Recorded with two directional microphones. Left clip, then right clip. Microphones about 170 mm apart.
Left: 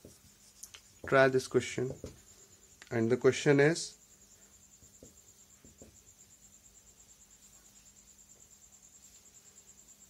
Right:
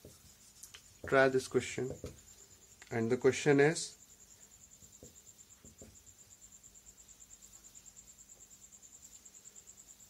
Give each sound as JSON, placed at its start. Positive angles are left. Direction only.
{"t": 0.7, "sound": "speech", "side_deg": 25}